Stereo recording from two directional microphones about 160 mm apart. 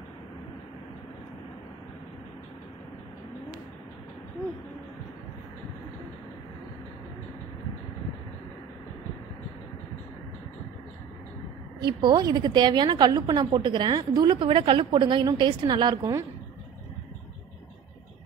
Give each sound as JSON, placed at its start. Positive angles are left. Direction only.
{"t": 11.8, "sound": "a woman's voice", "side_deg": -25}